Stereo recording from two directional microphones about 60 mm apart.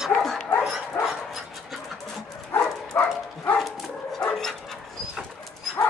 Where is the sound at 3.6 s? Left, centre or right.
Centre.